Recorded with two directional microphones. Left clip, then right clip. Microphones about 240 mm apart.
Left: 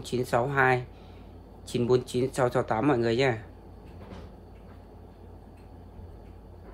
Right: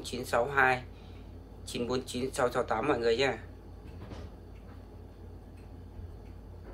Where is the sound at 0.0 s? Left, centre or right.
Left.